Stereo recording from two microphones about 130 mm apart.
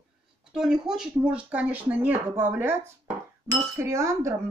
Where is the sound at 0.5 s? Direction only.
5° right (ahead or behind).